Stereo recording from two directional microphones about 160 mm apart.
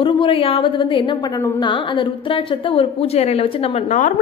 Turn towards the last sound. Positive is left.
turn(degrees=50)  # may be behind; listen again after turning